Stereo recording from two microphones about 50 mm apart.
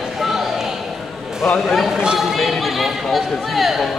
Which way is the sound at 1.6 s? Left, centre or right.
Centre.